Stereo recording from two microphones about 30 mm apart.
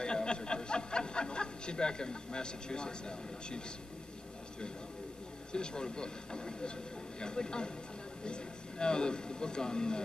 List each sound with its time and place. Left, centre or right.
0.0 s speech: left
5.5 s speech: left